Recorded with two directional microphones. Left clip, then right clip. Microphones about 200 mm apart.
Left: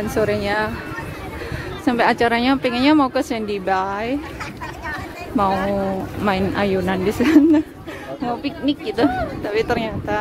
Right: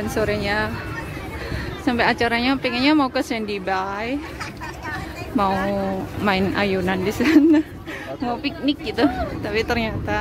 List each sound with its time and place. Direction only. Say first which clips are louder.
0.0 s speech: left 2 dB; 5° left (ahead or behind)
1.9 s speech: left 3 dB; 10° left (ahead or behind)
5.5 s speech: left 2 dB; 20° right (ahead or behind)
6.2 s a woman's voice: left 1 dB; centre (ahead or behind)